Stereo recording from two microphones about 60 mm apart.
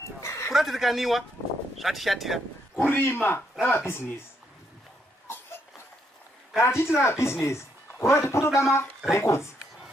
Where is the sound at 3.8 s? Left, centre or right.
Left.